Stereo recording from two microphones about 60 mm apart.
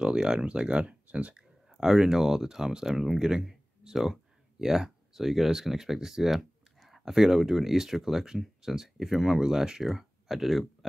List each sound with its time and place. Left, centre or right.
0.0 s speech: centre
1.7 s speech: centre